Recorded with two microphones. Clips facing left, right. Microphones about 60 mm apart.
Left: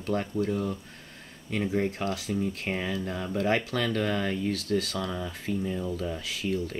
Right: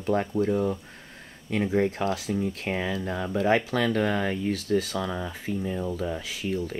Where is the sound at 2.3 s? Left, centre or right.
Centre.